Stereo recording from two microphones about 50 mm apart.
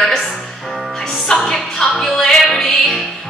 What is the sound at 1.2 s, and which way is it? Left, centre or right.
Music, centre.